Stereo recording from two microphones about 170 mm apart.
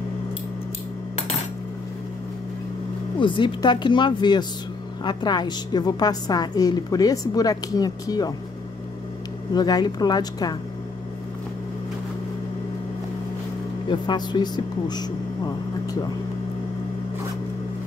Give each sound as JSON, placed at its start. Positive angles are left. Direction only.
{"t": 3.2, "sound": "a woman's voice", "side_deg": 30}
{"t": 9.5, "sound": "a woman's voice", "side_deg": 25}
{"t": 13.8, "sound": "speech", "side_deg": 25}